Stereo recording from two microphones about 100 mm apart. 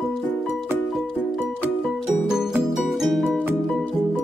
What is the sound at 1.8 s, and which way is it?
Music, 5° right (ahead or behind).